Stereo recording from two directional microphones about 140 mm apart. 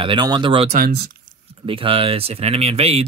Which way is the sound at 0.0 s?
35° right (ahead or behind).